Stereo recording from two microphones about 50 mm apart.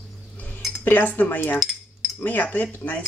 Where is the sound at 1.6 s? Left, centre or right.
Centre.